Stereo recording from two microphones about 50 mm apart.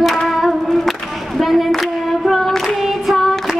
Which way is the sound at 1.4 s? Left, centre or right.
Centre.